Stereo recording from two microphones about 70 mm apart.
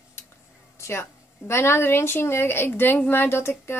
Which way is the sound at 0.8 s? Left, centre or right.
Left.